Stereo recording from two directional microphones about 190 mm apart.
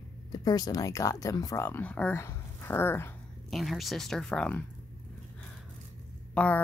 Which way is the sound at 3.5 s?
Centre (ahead or behind).